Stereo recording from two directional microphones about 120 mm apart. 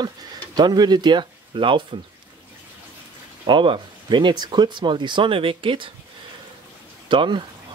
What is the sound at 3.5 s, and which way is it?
Speech, 45° right (ahead or behind).